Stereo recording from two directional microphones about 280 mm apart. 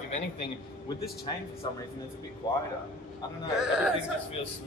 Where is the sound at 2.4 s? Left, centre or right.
Centre.